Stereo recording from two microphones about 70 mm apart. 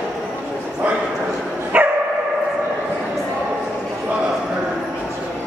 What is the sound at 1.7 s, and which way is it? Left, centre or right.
Dog, right.